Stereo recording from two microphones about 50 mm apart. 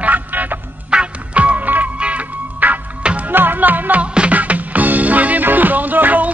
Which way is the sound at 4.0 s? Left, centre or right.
Right.